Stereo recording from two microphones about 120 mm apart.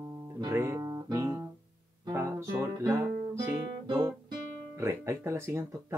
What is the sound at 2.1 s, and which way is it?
Guitar, 20° right (ahead or behind).